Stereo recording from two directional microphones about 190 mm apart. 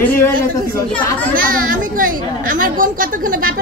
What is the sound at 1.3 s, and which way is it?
Chatter, 50° right (ahead or behind).